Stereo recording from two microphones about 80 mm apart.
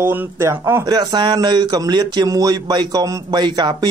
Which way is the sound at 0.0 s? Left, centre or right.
Right.